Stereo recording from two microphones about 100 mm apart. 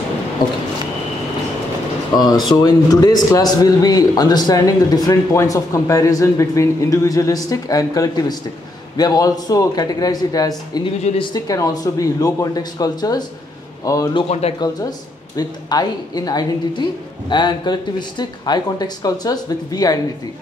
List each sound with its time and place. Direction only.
2.1 s speech: 40° left (ahead or behind)
11.0 s speech: 90° left
11.3 s speech: 35° left (ahead or behind)
14.4 s speech: 90° left
15.3 s speech: 40° left (ahead or behind)